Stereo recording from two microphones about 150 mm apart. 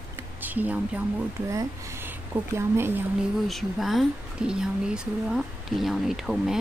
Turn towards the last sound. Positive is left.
turn(degrees=0)  # may be behind; listen again after turning